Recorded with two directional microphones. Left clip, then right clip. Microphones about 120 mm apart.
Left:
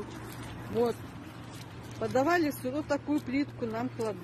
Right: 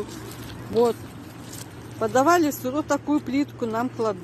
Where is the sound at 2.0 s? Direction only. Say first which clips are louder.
Right 8 dB; 5° right (ahead or behind).